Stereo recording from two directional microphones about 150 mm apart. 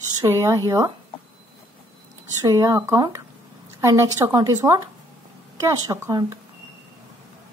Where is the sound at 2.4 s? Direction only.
20° right (ahead or behind).